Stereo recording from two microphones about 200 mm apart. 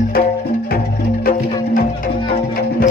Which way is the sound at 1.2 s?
45° left (ahead or behind).